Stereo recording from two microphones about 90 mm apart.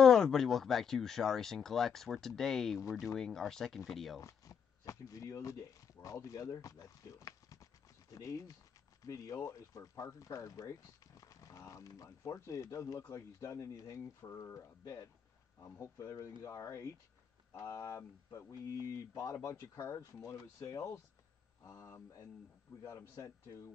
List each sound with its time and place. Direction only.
0.0 s speech: 5° left (ahead or behind)
4.2 s speech: 35° left (ahead or behind)